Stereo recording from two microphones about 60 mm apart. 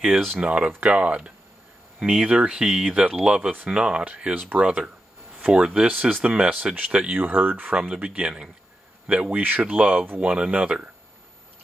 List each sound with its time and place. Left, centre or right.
0.0 s speech: centre
0.3 s speech: centre
7.2 s speech: right
9.3 s speech: right